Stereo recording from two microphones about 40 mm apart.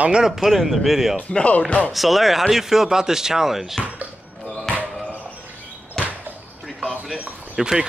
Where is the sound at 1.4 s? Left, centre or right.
Left.